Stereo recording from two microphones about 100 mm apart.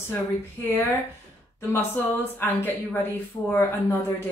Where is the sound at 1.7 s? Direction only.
20° left (ahead or behind).